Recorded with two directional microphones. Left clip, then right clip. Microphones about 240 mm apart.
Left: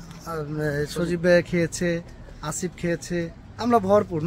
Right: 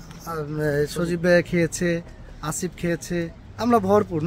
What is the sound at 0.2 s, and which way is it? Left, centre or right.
Speech, centre.